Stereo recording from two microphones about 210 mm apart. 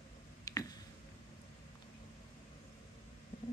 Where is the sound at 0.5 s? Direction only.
15° left (ahead or behind).